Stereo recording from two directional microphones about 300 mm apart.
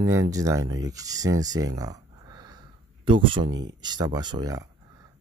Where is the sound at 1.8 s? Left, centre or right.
Centre.